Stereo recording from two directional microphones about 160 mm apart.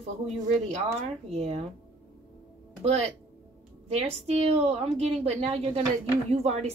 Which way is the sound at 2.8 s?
40° right (ahead or behind).